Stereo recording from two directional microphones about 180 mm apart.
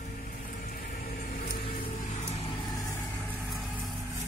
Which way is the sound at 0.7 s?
50° left (ahead or behind).